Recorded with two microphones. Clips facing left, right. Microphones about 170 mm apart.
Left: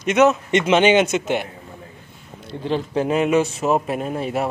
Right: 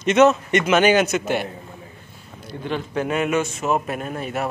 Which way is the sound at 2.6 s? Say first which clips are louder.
Left 3 dB; 30° left (ahead or behind).